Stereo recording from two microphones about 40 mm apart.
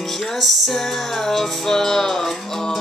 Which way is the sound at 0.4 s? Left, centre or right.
Centre.